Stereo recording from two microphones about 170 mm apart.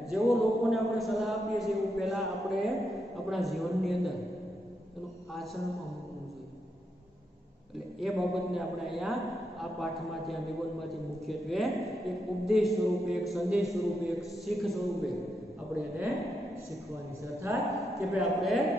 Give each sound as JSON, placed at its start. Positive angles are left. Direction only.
{"t": 0.1, "sound": "a man's voice", "side_deg": 0}
{"t": 5.3, "sound": "a man's voice", "side_deg": 0}
{"t": 8.0, "sound": "a man's voice", "side_deg": 0}
{"t": 17.4, "sound": "speech", "side_deg": -15}
{"t": 18.0, "sound": "a man's voice", "side_deg": 0}